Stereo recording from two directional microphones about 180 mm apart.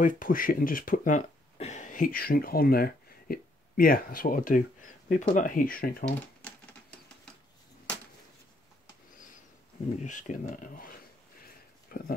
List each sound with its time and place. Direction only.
0.0 s speech: 50° left (ahead or behind)
10.0 s speech: 45° left (ahead or behind)